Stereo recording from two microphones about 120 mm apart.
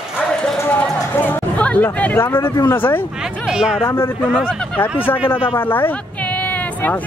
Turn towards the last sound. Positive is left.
turn(degrees=15)  # may be behind; listen again after turning